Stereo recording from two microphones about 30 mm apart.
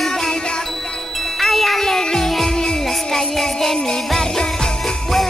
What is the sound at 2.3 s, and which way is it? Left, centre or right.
Music, centre.